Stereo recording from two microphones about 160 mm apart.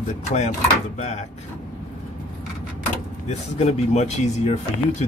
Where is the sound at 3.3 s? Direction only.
45° left (ahead or behind).